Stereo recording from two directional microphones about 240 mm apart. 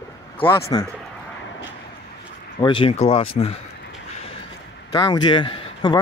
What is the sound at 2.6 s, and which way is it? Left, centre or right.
Speech, left.